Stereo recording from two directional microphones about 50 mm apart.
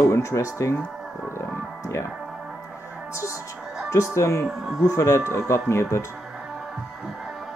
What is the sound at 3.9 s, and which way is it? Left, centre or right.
Speech, left.